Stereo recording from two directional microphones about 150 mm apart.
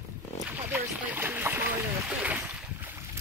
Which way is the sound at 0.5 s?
15° right (ahead or behind).